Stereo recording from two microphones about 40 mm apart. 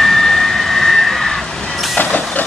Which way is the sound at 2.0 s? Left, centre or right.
Left.